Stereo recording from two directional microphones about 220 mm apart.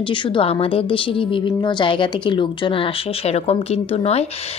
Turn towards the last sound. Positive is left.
turn(degrees=25)  # may be behind; listen again after turning